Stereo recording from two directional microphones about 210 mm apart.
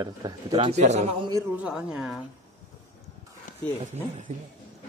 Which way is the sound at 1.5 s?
5° right (ahead or behind).